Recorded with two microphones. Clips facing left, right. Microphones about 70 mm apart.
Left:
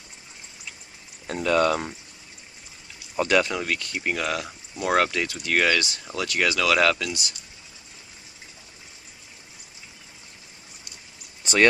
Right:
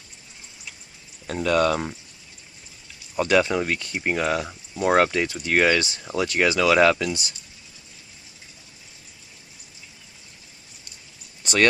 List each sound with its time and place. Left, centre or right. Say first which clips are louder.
1.2 s speech: right 1 dB; centre
3.2 s speech: right 2 dB; centre
3.4 s speech: right 3 dB; centre